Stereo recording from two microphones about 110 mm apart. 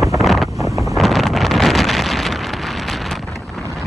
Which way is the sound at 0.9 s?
Centre (ahead or behind).